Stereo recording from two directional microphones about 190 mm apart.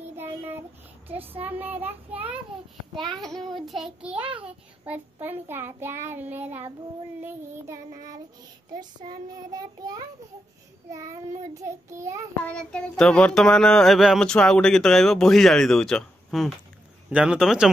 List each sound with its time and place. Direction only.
0.1 s child singing: 10° right (ahead or behind)
4.2 s child singing: 30° right (ahead or behind)
4.8 s child singing: 10° right (ahead or behind)
9.5 s child singing: 20° right (ahead or behind)
11.5 s child singing: 15° right (ahead or behind)
12.4 s child singing: 5° left (ahead or behind)